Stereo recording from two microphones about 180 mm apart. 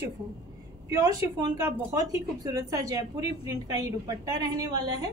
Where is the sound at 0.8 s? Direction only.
20° right (ahead or behind).